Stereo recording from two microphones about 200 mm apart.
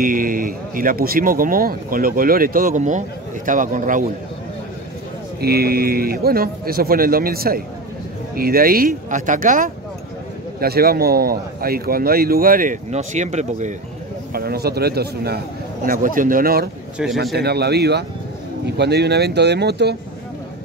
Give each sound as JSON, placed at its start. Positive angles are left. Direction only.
{"t": 0.0, "sound": "a man's voice", "side_deg": -45}
{"t": 5.4, "sound": "a man's voice", "side_deg": -50}
{"t": 14.3, "sound": "a man's voice", "side_deg": -50}
{"t": 17.0, "sound": "speech", "side_deg": -5}
{"t": 17.4, "sound": "speech", "side_deg": -55}